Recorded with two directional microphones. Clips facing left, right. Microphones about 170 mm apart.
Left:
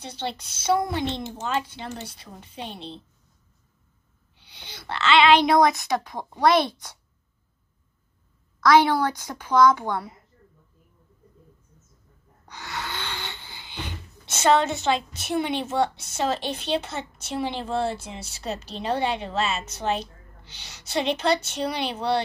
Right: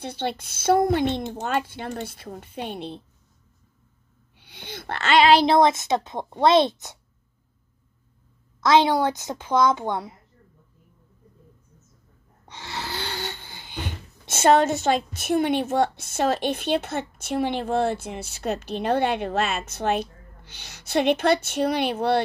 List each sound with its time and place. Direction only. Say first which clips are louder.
0.0 s speech: right 4 dB; 55° right (ahead or behind)
4.4 s speech: right 7 dB; 50° right (ahead or behind); by 7.0 s 20° right (ahead or behind)
8.5 s speech: even; 25° right (ahead or behind)
12.4 s wheeze: even; 25° right (ahead or behind); by 22.2 s 55° right (ahead or behind)